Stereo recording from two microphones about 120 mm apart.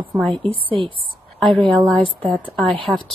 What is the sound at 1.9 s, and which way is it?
A woman's voice, 5° left (ahead or behind).